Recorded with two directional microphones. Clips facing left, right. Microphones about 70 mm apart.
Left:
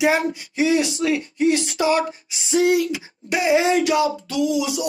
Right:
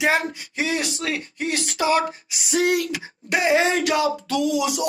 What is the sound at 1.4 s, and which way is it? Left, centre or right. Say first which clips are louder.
Speech: left 4 dB; left.